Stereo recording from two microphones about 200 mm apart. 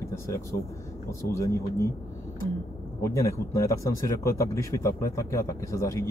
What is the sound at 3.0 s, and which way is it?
Speech, 15° left (ahead or behind).